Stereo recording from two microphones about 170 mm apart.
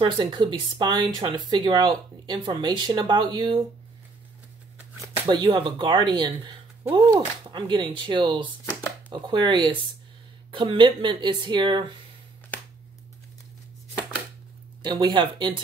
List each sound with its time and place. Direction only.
0.0 s speech: 25° right (ahead or behind)
5.3 s speech: 30° right (ahead or behind)
14.8 s speech: 25° right (ahead or behind)